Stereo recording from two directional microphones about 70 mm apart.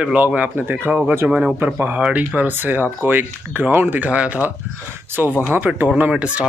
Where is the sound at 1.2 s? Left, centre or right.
Centre.